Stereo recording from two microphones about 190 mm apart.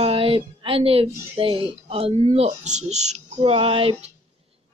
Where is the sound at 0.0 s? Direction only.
30° right (ahead or behind).